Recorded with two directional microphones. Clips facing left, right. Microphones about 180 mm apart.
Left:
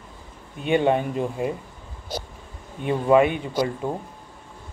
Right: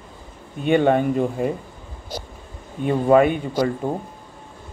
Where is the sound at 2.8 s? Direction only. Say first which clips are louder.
Right 2 dB; 45° right (ahead or behind).